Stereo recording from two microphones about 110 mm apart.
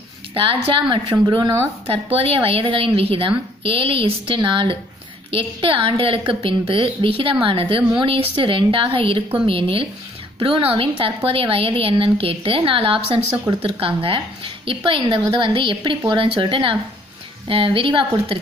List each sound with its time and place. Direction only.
0.3 s a woman's voice: 55° right (ahead or behind); by 1.7 s 35° right (ahead or behind)
1.9 s a woman's voice: 55° right (ahead or behind)